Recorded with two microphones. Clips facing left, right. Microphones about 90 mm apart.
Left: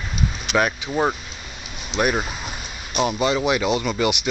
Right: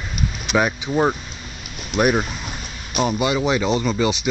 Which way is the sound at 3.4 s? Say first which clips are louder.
Right 1 dB; 10° left (ahead or behind).